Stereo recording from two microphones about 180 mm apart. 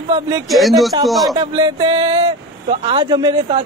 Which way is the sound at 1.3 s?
25° right (ahead or behind).